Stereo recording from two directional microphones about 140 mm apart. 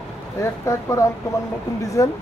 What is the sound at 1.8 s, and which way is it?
Speech, 25° left (ahead or behind).